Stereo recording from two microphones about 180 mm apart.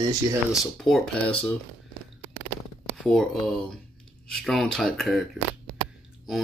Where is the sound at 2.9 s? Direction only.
Centre (ahead or behind).